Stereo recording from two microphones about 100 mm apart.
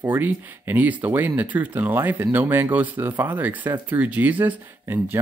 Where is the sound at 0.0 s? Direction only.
20° right (ahead or behind).